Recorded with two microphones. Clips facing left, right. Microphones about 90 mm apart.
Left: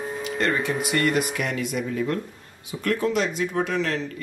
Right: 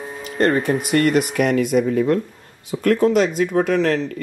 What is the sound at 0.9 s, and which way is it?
Speech, 50° right (ahead or behind).